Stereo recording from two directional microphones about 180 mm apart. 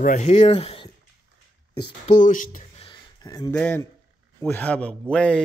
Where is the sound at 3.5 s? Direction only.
10° left (ahead or behind).